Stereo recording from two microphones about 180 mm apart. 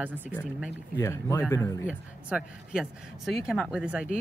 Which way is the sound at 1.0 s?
15° left (ahead or behind).